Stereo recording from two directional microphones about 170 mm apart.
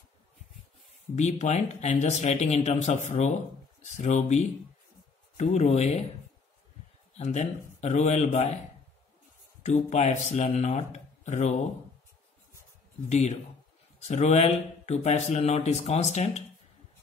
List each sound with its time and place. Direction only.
1.1 s speech: 40° left (ahead or behind)
7.2 s speech: 40° left (ahead or behind)
9.6 s speech: 45° left (ahead or behind)
13.1 s speech: 40° left (ahead or behind)